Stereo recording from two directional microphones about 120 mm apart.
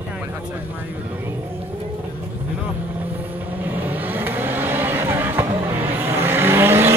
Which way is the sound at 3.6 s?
15° right (ahead or behind).